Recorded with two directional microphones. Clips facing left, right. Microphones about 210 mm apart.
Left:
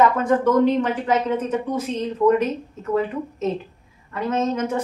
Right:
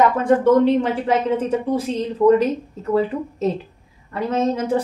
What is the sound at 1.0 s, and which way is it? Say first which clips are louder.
A woman's voice: right 2 dB; 30° right (ahead or behind).